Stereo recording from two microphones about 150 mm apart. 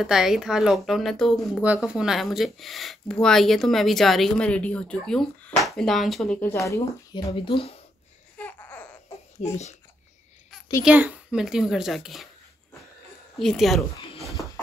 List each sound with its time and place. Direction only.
0.0 s speech: 5° right (ahead or behind)
6.6 s speech: 20° left (ahead or behind)
7.3 s speech: 35° left (ahead or behind)
8.4 s laughter: 10° left (ahead or behind)
9.4 s a child's voice: 50° left (ahead or behind)
10.9 s speech: 10° right (ahead or behind)
13.4 s speech: centre (ahead or behind)